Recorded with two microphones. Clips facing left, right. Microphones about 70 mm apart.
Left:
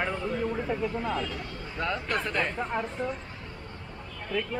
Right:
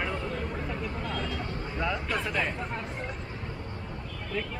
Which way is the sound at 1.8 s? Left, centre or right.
Centre.